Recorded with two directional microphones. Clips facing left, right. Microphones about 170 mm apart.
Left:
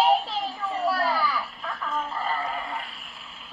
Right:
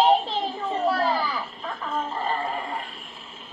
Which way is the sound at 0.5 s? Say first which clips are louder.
Right 2 dB; 30° right (ahead or behind).